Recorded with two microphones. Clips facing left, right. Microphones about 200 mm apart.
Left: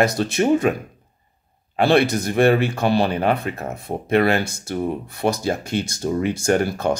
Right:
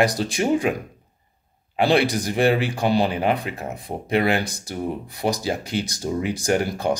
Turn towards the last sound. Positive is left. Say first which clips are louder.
# left 2 dB
turn(degrees=-15)  # may be behind; listen again after turning